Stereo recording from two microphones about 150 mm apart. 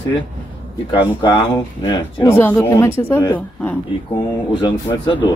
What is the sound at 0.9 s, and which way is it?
Speech, 30° left (ahead or behind).